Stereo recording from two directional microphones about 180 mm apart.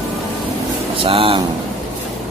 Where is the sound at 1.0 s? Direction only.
30° right (ahead or behind).